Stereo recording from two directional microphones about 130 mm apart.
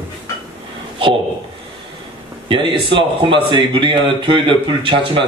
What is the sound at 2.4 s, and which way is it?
A man's voice, 40° right (ahead or behind).